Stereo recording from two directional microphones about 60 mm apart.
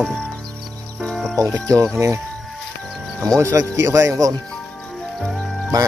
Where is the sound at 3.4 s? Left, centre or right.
Right.